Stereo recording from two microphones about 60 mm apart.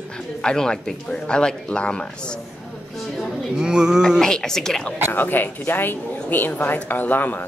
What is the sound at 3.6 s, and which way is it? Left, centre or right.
Speech, centre.